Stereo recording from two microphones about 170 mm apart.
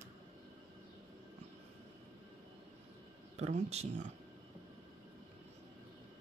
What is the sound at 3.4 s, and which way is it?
Speech, 40° right (ahead or behind).